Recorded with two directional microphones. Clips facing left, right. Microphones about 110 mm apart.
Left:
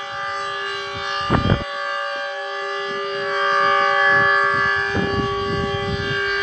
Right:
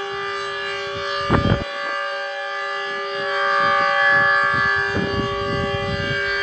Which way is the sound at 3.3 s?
Centre (ahead or behind).